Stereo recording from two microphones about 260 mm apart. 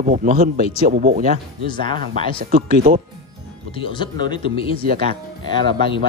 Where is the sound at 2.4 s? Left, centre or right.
Right.